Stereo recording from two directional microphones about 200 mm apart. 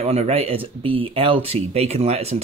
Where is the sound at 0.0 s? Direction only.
30° right (ahead or behind).